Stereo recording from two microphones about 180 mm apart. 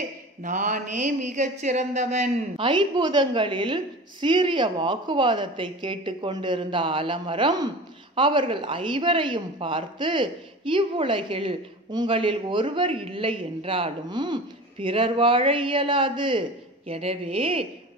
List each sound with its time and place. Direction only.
0.4 s speech: 45° right (ahead or behind)